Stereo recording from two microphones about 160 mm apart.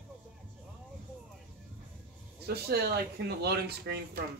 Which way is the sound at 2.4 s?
80° right.